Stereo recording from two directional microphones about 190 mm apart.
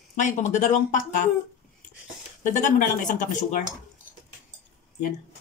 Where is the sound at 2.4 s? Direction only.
40° left (ahead or behind).